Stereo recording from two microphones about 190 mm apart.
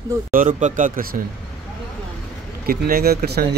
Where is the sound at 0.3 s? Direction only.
45° right (ahead or behind).